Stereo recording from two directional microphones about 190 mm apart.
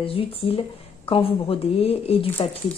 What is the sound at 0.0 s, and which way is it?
Speech, 30° left (ahead or behind).